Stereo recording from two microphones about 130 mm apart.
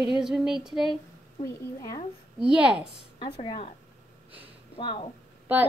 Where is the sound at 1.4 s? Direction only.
30° left (ahead or behind).